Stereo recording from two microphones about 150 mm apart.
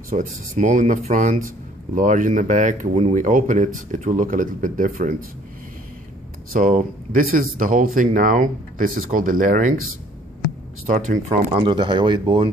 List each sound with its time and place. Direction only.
0.1 s speech: 60° right (ahead or behind)
6.5 s speech: 65° right (ahead or behind)
10.9 s speech: 55° right (ahead or behind)
11.5 s speech: 35° right (ahead or behind)